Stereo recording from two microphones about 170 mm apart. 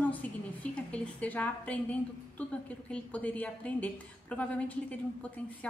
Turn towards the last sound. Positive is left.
turn(degrees=10)  # may be behind; listen again after turning